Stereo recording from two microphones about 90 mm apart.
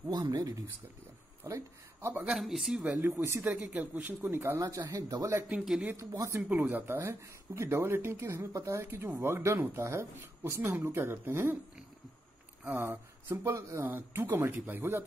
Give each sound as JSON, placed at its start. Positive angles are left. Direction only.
{"t": 0.1, "sound": "speech", "side_deg": -45}
{"t": 1.4, "sound": "speech", "side_deg": -30}
{"t": 2.2, "sound": "speech", "side_deg": 0}
{"t": 3.2, "sound": "speech", "side_deg": -30}
{"t": 3.4, "sound": "speech", "side_deg": -15}
{"t": 4.0, "sound": "speech", "side_deg": -25}
{"t": 4.6, "sound": "speech", "side_deg": -40}
{"t": 6.6, "sound": "speech", "side_deg": -25}
{"t": 12.6, "sound": "speech", "side_deg": -25}